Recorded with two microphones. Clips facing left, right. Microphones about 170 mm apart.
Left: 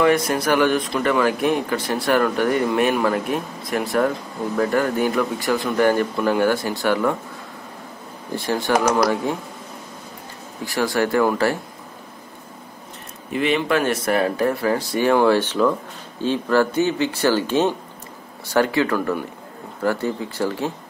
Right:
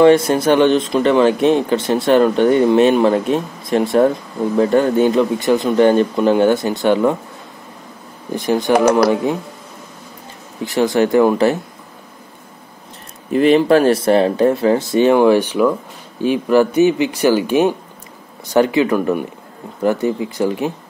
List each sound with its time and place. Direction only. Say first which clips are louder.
0.0 s speech: right 7 dB; 30° right (ahead or behind)
8.4 s speech: right 6 dB; 20° right (ahead or behind)
10.6 s speech: right 6 dB; 20° right (ahead or behind)
13.3 s speech: right 9 dB; 40° right (ahead or behind); by 20.7 s 15° right (ahead or behind)